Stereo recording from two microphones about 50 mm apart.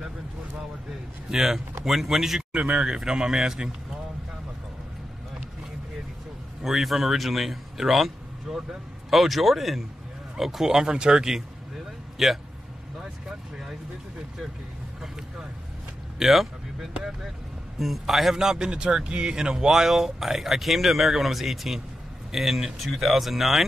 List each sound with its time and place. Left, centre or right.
1.3 s a man's voice: centre
2.6 s speech: right
3.0 s a man's voice: centre
6.6 s a man's voice: centre
16.2 s a man's voice: centre